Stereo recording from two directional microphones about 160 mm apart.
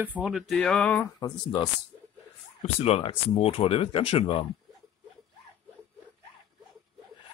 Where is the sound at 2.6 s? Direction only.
40° left (ahead or behind).